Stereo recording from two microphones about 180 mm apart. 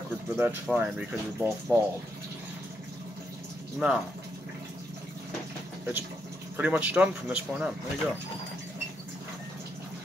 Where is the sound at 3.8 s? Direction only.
5° right (ahead or behind).